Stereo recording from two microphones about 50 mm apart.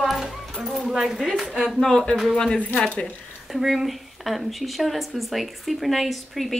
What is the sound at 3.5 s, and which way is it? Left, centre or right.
Speech, centre.